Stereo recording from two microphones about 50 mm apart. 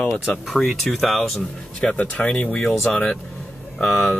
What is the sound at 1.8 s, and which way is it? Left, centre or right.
Speech, left.